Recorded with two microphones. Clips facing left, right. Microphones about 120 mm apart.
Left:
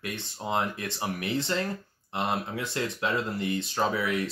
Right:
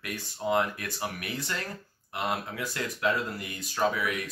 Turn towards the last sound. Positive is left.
turn(degrees=25)  # may be behind; listen again after turning